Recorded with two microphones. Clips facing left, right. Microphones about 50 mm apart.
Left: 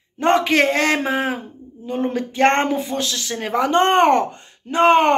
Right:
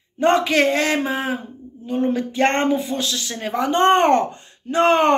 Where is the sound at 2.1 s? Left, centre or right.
Left.